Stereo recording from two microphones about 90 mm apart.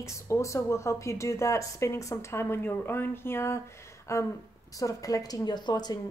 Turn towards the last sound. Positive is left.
turn(degrees=50)  # may be behind; listen again after turning